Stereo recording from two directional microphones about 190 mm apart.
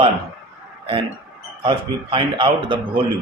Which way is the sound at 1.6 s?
25° right (ahead or behind).